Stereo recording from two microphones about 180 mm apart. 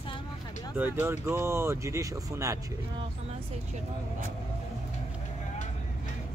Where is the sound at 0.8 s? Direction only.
15° right (ahead or behind).